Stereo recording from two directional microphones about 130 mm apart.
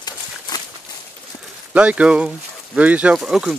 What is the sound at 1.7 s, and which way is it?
Speech, 10° right (ahead or behind).